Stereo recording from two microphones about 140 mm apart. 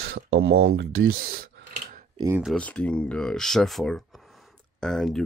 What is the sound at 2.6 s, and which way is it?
Speech, 10° left (ahead or behind).